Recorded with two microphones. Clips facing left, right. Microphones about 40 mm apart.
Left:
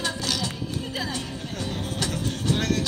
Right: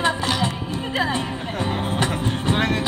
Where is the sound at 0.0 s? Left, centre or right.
Right.